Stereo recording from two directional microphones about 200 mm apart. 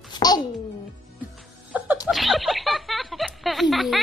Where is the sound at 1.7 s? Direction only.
5° right (ahead or behind).